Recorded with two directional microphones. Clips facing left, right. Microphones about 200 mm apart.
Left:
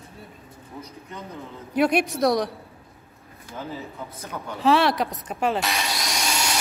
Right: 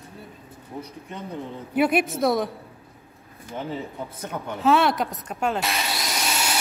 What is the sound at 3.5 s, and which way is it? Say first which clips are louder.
Speech: right 3 dB; 25° right (ahead or behind).